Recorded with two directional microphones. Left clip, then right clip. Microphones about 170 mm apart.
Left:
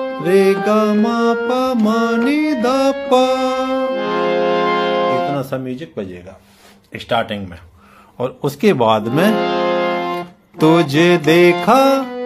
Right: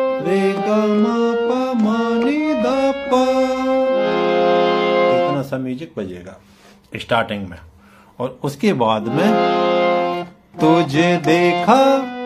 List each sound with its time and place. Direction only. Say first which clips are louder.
0.2 s speech: left 5 dB; 40° left (ahead or behind)
1.5 s music: left 3 dB; 40° left (ahead or behind)
3.8 s music: right 1 dB; 30° right (ahead or behind)
5.3 s music: left 1 dB; 25° left (ahead or behind)
6.9 s speech: even; 5° right (ahead or behind)
8.2 s speech: left 4 dB; 30° left (ahead or behind)
9.3 s music: right 1 dB; 25° right (ahead or behind)
10.6 s speech: left 2 dB; 35° left (ahead or behind)